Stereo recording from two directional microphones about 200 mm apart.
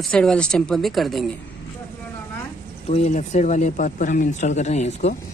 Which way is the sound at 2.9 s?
35° left (ahead or behind).